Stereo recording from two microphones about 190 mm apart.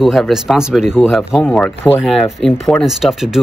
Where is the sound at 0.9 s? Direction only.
10° left (ahead or behind).